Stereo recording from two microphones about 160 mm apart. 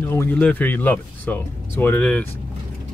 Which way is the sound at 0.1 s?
15° left (ahead or behind).